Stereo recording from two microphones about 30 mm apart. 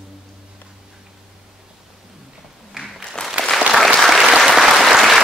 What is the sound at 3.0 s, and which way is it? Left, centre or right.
Applause, left.